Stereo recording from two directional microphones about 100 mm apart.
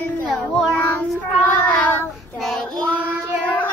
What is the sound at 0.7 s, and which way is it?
Child singing, 15° left (ahead or behind).